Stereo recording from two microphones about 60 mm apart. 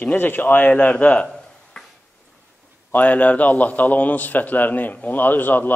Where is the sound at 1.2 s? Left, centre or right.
Centre.